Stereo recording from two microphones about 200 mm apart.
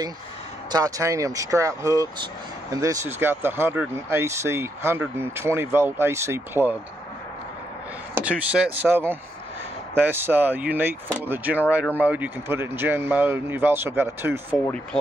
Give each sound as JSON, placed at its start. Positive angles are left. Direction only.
{"t": 0.7, "sound": "speech", "side_deg": -20}
{"t": 8.1, "sound": "speech", "side_deg": -5}